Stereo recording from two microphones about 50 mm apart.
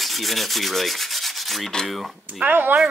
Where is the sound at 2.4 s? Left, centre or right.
Right.